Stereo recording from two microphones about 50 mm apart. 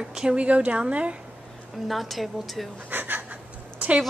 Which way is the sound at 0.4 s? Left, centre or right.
Right.